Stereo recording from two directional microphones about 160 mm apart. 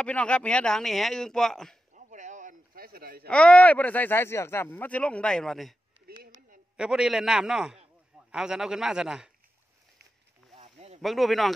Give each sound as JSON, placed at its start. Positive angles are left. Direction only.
{"t": 0.0, "sound": "speech", "side_deg": 5}
{"t": 2.0, "sound": "a sound", "side_deg": -50}
{"t": 3.3, "sound": "speech", "side_deg": 5}
{"t": 6.8, "sound": "speech", "side_deg": -5}
{"t": 10.5, "sound": "a sound", "side_deg": -40}
{"t": 11.0, "sound": "speech", "side_deg": 0}